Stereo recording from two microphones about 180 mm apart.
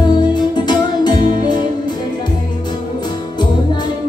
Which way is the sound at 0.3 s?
25° left (ahead or behind).